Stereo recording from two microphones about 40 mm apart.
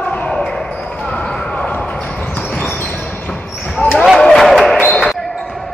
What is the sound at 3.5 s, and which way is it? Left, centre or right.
Basketball bounce, centre.